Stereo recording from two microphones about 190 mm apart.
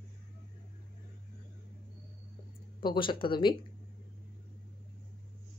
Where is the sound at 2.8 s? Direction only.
25° left (ahead or behind).